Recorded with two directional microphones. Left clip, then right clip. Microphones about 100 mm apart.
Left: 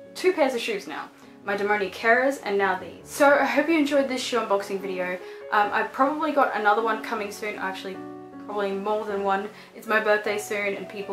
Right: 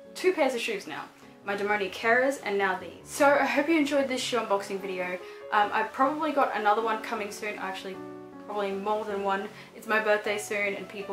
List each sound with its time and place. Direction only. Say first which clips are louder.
0.2 s speech: left 3 dB; centre (ahead or behind)